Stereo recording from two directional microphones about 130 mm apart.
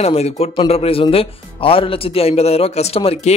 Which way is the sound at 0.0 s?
55° left (ahead or behind).